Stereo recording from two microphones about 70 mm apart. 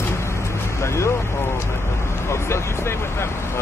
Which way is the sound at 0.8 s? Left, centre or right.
Left.